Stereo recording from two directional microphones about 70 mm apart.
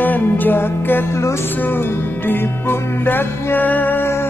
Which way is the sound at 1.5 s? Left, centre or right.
Left.